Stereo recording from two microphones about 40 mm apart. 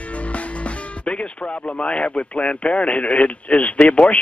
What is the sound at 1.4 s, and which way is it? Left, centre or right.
Speech, left.